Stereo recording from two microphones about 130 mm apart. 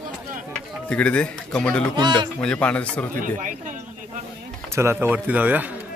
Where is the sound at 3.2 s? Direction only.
90° right.